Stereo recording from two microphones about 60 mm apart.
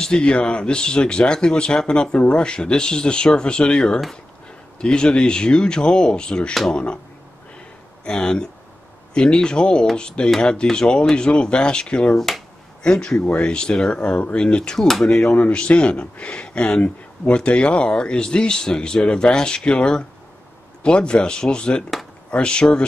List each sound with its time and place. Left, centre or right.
0.0 s speech: centre
8.0 s speech: centre